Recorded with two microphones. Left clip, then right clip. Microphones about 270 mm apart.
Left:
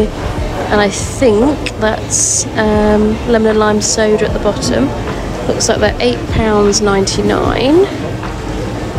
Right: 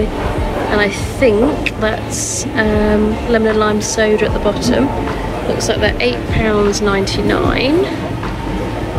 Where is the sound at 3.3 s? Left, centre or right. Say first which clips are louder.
Left 3 dB; centre.